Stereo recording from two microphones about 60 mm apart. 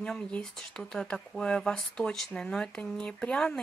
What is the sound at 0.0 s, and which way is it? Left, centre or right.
Speech, centre.